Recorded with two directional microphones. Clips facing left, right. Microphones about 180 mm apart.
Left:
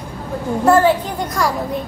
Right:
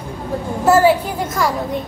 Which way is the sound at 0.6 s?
5° right (ahead or behind).